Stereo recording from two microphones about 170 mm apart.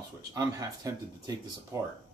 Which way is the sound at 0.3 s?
20° right (ahead or behind).